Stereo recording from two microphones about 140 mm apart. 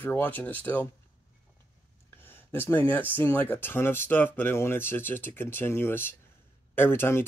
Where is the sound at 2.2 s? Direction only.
15° left (ahead or behind).